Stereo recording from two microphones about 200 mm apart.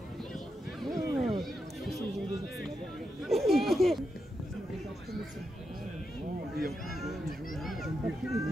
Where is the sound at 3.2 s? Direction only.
Centre (ahead or behind).